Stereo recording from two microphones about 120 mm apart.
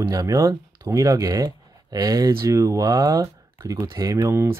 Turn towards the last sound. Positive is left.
turn(degrees=-20)  # may be behind; listen again after turning